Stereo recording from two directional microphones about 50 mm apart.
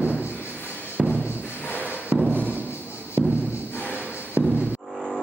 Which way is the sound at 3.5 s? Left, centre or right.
Left.